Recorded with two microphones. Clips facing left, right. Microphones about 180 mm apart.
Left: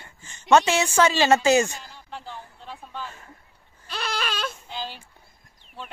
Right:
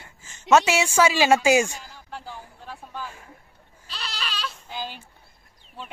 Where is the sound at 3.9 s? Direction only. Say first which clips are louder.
Left 6 dB; 50° left (ahead or behind).